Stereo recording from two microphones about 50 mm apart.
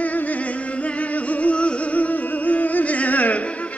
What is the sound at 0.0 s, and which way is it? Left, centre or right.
Music, left.